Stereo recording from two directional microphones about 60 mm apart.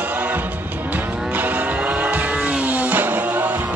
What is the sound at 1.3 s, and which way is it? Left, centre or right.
Vehicle, right.